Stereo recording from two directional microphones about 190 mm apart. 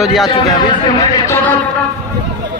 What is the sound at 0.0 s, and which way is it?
Speech, centre (ahead or behind).